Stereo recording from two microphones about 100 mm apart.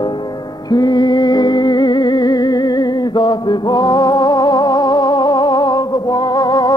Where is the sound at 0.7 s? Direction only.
45° left (ahead or behind).